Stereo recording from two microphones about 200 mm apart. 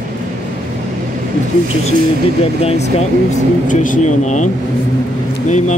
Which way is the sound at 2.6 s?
30° left (ahead or behind).